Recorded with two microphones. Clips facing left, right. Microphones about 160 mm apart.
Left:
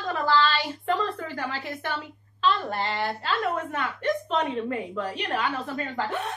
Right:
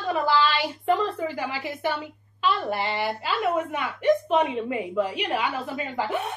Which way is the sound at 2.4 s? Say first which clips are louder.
Even; 10° right (ahead or behind).